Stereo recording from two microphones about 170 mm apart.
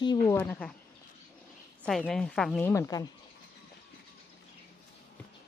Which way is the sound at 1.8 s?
5° left (ahead or behind).